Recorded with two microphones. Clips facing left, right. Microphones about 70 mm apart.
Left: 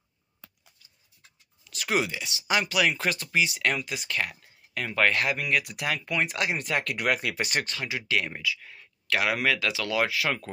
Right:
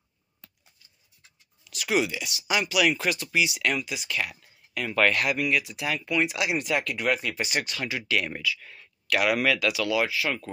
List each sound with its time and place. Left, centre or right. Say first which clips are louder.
1.7 s speech: right 2 dB; left
5.5 s speech: even; left
7.8 s speech: right 1 dB; left
10.0 s speech: even; left